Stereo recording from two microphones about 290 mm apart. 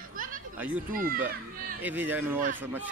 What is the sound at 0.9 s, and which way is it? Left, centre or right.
Speech, right.